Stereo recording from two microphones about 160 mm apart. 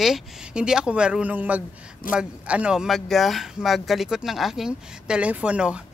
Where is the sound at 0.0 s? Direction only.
5° right (ahead or behind).